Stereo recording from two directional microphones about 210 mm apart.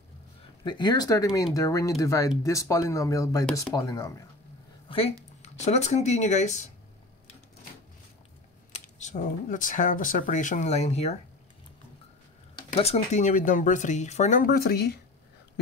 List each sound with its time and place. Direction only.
0.7 s speech: 20° left (ahead or behind)
4.8 s speech: 25° left (ahead or behind)
8.7 s speech: 35° left (ahead or behind)
12.7 s speech: 30° left (ahead or behind); by 15.0 s 50° left (ahead or behind)